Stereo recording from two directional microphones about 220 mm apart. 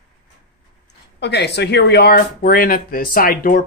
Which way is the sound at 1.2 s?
50° left (ahead or behind).